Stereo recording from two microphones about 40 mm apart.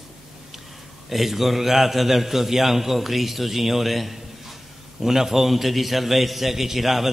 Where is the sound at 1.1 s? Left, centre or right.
Centre.